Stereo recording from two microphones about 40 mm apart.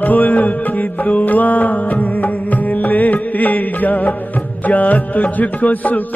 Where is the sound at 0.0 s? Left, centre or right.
Left.